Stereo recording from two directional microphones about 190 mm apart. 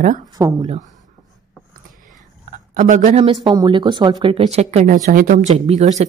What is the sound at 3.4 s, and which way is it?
Speech, 25° right (ahead or behind).